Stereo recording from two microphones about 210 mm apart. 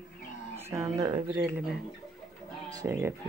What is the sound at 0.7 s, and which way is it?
Speech, 15° right (ahead or behind).